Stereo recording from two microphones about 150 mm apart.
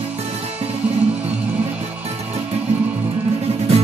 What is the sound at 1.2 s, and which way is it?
Music, 10° right (ahead or behind).